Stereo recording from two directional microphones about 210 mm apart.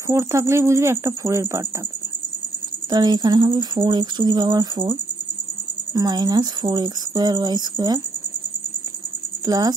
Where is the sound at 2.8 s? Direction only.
20° right (ahead or behind).